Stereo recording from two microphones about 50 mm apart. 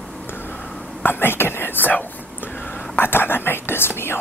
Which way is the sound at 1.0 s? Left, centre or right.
Left.